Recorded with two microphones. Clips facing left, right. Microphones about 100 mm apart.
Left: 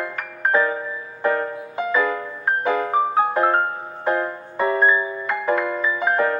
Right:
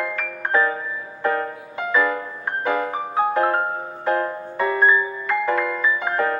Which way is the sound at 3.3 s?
20° left (ahead or behind).